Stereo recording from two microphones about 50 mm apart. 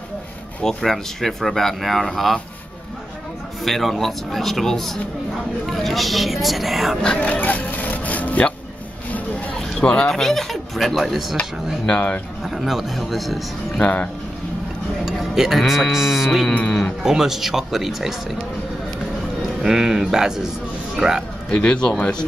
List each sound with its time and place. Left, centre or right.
0.7 s speech: centre
3.6 s speech: centre
7.2 s music: left
9.1 s a sound: left
10.0 s speech: centre
11.8 s speech: left
12.4 s speech: centre
15.0 s speech: centre
16.4 s speech: left
17.0 s speech: centre
19.6 s a man's voice: centre
21.5 s speech: left